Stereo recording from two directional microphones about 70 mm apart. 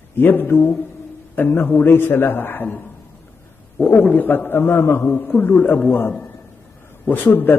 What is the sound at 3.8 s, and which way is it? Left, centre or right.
A man's voice, left.